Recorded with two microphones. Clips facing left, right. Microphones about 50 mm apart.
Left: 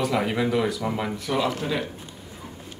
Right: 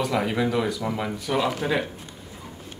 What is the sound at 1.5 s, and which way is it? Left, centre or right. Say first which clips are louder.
Speech: right 2 dB; right.